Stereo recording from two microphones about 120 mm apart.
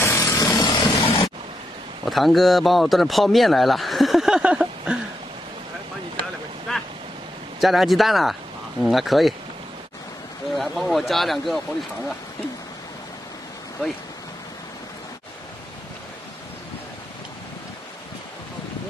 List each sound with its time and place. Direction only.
0.0 s shatter: 25° left (ahead or behind); by 1.3 s 50° left (ahead or behind)
2.0 s speech: centre (ahead or behind)
6.7 s boat: 5° left (ahead or behind)
7.6 s speech: centre (ahead or behind)
10.5 s speech: centre (ahead or behind)